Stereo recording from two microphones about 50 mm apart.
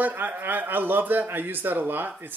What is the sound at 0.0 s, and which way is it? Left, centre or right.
Speech, right.